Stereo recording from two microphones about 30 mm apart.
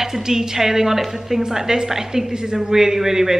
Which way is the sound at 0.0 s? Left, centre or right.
Centre.